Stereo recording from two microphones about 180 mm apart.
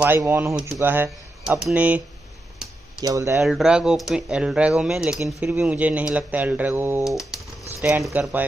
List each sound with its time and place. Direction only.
0.0 s speech: 10° right (ahead or behind)
3.0 s speech: 20° right (ahead or behind)
3.4 s speech: 5° right (ahead or behind)
7.1 s speech: centre (ahead or behind)